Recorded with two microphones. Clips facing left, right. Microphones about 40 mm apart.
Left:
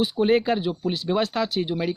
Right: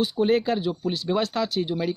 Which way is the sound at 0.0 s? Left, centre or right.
Left.